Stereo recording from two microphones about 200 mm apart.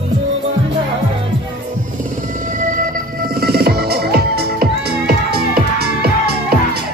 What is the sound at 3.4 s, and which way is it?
Music, 50° right (ahead or behind).